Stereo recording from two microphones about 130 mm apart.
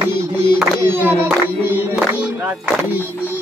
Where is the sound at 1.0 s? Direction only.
15° right (ahead or behind).